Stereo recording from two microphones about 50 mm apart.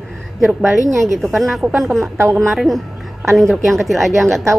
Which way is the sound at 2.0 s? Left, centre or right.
Right.